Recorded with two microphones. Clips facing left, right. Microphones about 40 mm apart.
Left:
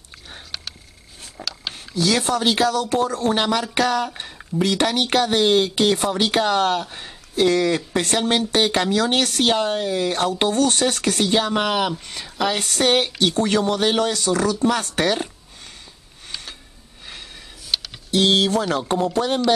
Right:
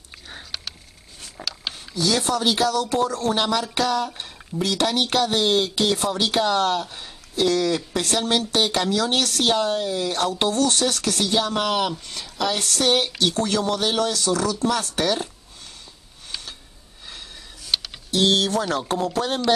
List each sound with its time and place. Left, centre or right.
0.3 s a sound: centre
1.7 s speech: centre
17.7 s typing: centre
18.1 s speech: centre